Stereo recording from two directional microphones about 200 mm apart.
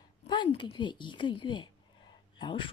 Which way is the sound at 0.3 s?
25° left (ahead or behind).